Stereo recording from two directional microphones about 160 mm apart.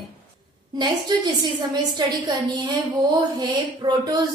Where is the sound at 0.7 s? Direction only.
25° right (ahead or behind).